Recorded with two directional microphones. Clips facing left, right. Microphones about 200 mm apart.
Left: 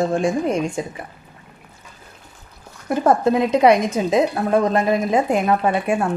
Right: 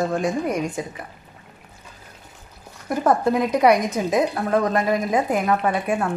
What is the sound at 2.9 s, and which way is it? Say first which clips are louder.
A woman's voice: left 3 dB; 25° left (ahead or behind).